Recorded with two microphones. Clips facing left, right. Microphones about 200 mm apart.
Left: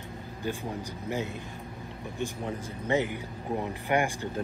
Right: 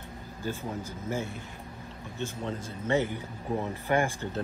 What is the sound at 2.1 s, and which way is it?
Speech, 15° left (ahead or behind).